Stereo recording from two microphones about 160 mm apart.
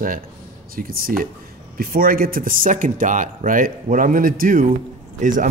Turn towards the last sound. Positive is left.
turn(degrees=-55)  # may be behind; listen again after turning